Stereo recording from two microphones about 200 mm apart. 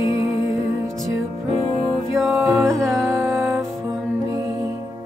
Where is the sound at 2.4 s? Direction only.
10° right (ahead or behind).